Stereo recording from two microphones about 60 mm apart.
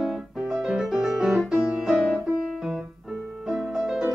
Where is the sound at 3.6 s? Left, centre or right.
Centre.